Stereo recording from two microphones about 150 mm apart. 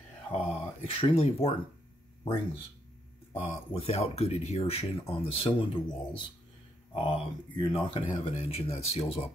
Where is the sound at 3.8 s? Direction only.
45° left (ahead or behind).